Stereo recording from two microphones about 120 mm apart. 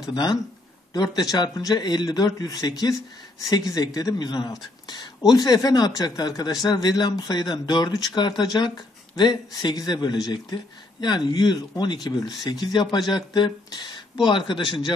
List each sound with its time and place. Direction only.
0.0 s speech: 35° left (ahead or behind)